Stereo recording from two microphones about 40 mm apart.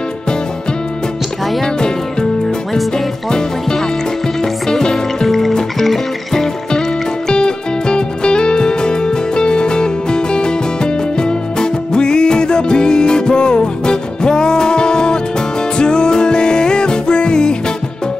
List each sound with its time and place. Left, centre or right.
1.6 s music: centre
2.4 s music: centre